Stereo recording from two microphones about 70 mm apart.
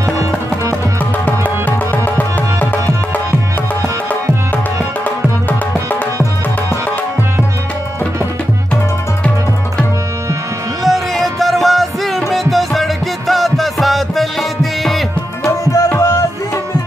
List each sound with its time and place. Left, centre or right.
1.9 s music: left
10.9 s music: centre
15.4 s tabla: left
16.0 s music: left